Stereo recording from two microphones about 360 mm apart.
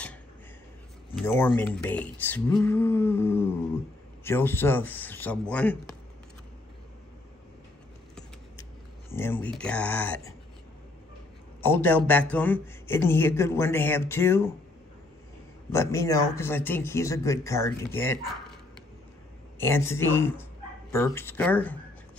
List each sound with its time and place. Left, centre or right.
1.1 s speech: centre
9.1 s speech: centre
11.6 s speech: centre
15.7 s speech: centre
19.6 s speech: centre